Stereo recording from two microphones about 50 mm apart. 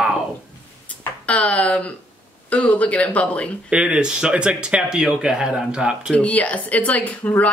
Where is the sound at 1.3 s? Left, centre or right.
Left.